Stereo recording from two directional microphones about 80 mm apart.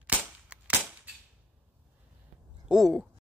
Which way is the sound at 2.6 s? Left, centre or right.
Centre.